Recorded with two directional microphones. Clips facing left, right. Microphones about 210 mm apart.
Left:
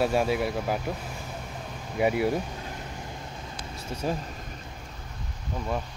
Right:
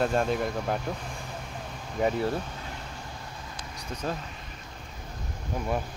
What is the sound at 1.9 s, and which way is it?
Speech, 10° left (ahead or behind).